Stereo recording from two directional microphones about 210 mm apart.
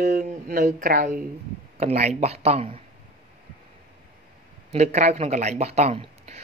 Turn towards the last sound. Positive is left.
turn(degrees=-30)  # may be behind; listen again after turning